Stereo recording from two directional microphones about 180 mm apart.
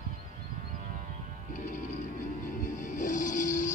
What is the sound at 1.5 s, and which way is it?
Music, 45° left (ahead or behind).